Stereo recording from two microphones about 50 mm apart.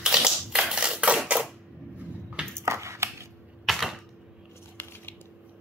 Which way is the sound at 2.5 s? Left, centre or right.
Right.